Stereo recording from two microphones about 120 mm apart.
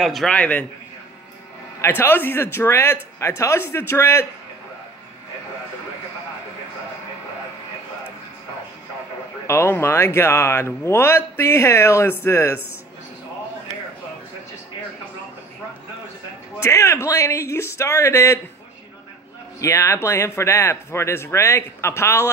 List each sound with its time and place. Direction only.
0.0 s a man's voice: centre (ahead or behind)
1.8 s speech: 20° left (ahead or behind)
9.5 s speech: 20° left (ahead or behind)
16.5 s speech: 25° left (ahead or behind)
19.6 s speech: 25° left (ahead or behind)